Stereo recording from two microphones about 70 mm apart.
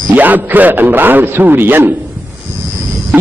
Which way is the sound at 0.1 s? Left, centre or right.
Right.